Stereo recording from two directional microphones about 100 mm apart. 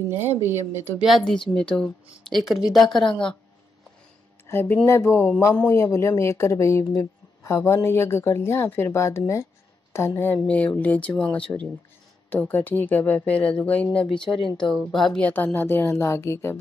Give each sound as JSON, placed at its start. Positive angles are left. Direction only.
{"t": 0.1, "sound": "a woman's voice", "side_deg": -20}
{"t": 1.0, "sound": "a woman's voice", "side_deg": 5}
{"t": 4.5, "sound": "a woman's voice", "side_deg": 20}
{"t": 10.3, "sound": "a woman's voice", "side_deg": 15}
{"t": 14.0, "sound": "speech", "side_deg": 5}
{"t": 15.2, "sound": "a woman's voice", "side_deg": 15}